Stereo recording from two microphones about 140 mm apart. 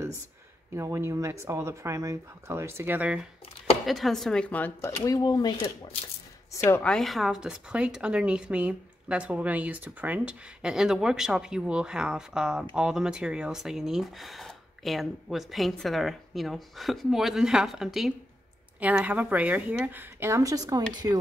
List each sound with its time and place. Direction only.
0.7 s speech: 20° right (ahead or behind); by 4.7 s 10° left (ahead or behind)
4.8 s speech: 25° left (ahead or behind)
6.8 s speech: 5° left (ahead or behind); by 21.2 s 30° right (ahead or behind)